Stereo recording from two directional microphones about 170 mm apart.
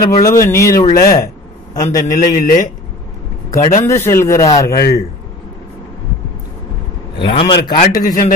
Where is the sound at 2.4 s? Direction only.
50° left (ahead or behind).